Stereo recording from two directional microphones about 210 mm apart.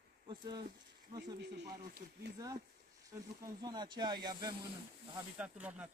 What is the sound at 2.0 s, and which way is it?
Speech, 35° right (ahead or behind).